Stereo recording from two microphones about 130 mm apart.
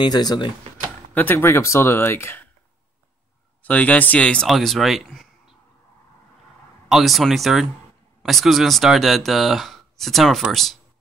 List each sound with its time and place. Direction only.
0.0 s speech: 30° left (ahead or behind)
1.1 s speech: 15° left (ahead or behind)
3.6 s speech: 10° left (ahead or behind)
6.9 s speech: centre (ahead or behind)